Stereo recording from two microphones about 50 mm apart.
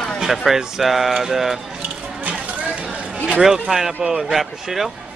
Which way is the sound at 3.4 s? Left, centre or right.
Centre.